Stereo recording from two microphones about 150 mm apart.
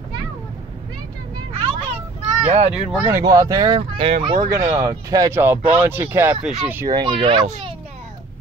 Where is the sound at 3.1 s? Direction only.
25° right (ahead or behind).